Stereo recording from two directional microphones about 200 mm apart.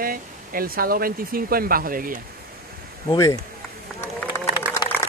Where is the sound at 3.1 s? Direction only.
15° left (ahead or behind).